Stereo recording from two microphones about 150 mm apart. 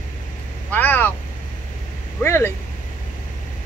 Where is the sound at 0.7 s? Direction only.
15° left (ahead or behind).